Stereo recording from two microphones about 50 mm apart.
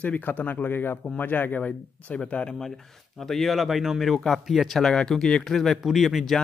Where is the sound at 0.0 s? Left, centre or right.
Left.